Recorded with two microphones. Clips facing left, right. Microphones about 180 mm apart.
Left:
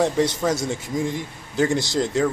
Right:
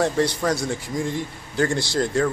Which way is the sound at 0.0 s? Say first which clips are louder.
Left 1 dB; 20° left (ahead or behind).